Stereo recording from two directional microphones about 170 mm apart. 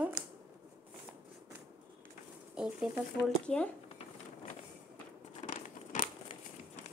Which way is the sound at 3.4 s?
5° left (ahead or behind).